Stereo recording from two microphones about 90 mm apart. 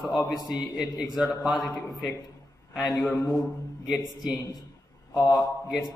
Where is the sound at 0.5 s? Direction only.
5° right (ahead or behind).